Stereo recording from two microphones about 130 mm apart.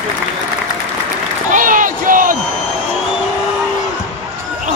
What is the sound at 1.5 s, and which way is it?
Crowd, 90° right.